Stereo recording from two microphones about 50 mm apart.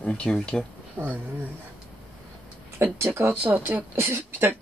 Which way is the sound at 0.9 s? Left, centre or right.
Right.